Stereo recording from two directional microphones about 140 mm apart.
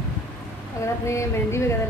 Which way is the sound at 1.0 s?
20° left (ahead or behind).